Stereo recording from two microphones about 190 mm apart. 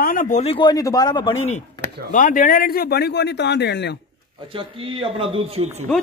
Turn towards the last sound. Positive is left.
turn(degrees=-35)  # may be behind; listen again after turning